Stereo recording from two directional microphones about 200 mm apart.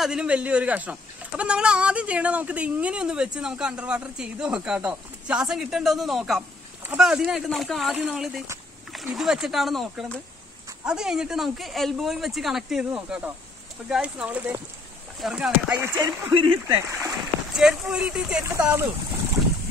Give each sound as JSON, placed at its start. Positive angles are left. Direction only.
{"t": 0.0, "sound": "a man's voice", "side_deg": -5}
{"t": 16.0, "sound": "speech", "side_deg": -20}
{"t": 17.1, "sound": "speech", "side_deg": 0}